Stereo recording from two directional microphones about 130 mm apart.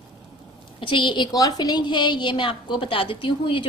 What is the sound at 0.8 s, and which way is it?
A woman's voice, 40° left (ahead or behind).